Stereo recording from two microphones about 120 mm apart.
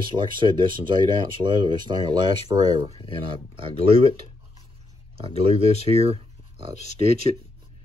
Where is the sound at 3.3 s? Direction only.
45° right (ahead or behind).